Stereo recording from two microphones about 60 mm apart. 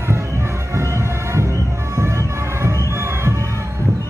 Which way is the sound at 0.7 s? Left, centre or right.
Right.